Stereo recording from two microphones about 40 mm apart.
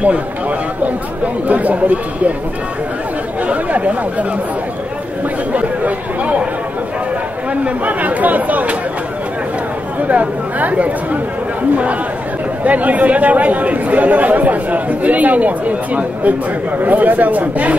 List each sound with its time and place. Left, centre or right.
0.0 s a man's voice: right
3.4 s speech: right
5.5 s speech: right
7.6 s speech: right
10.0 s speech: right
12.6 s speech: right